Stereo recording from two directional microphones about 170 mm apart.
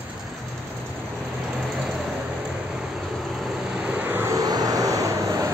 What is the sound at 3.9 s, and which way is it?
Vehicle, 10° right (ahead or behind).